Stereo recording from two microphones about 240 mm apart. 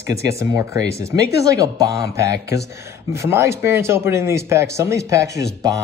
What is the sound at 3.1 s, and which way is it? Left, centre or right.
Speech, centre.